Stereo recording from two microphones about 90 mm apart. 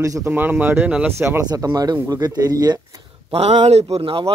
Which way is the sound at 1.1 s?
30° right (ahead or behind).